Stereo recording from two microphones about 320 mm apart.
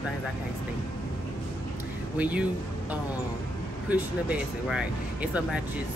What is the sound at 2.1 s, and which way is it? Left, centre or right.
Speech, centre.